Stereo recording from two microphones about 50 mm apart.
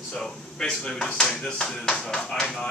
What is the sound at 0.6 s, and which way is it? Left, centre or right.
Speech, centre.